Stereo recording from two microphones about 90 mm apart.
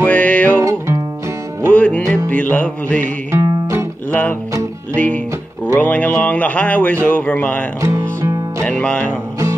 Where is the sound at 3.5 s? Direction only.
35° right (ahead or behind).